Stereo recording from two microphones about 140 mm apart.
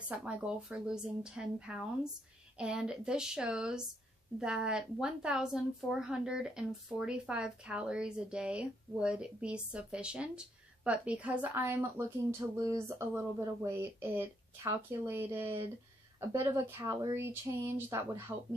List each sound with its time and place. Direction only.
0.1 s a woman's voice: 10° right (ahead or behind)